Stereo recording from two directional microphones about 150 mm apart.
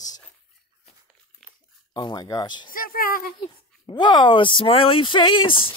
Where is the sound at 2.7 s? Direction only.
75° left (ahead or behind).